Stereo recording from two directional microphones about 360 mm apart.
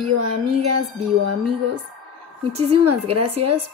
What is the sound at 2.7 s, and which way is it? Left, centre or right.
Speech, right.